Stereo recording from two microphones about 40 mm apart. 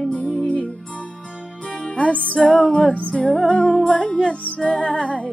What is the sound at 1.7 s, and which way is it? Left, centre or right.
Music, left.